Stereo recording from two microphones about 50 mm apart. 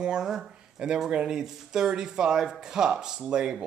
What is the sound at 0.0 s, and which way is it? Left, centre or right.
Speech, centre.